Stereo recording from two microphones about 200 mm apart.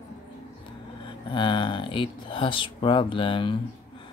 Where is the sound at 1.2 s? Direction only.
25° left (ahead or behind).